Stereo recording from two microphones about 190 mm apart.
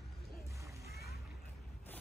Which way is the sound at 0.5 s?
15° right (ahead or behind).